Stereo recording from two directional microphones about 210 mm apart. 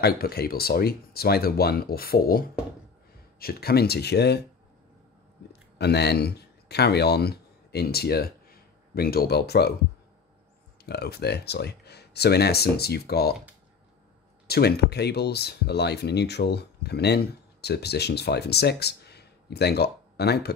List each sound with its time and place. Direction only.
0.0 s speech: 45° left (ahead or behind)
5.8 s speech: 50° left (ahead or behind)
10.9 s speech: 50° left (ahead or behind)
14.5 s speech: 50° left (ahead or behind)